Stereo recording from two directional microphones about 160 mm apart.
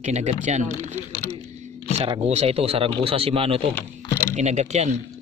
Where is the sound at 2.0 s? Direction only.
35° right (ahead or behind).